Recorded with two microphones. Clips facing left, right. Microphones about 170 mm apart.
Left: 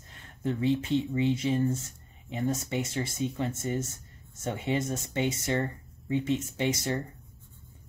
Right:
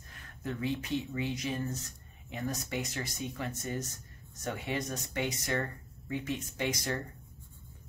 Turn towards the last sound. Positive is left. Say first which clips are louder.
# left 5 dB
turn(degrees=25)  # may be behind; listen again after turning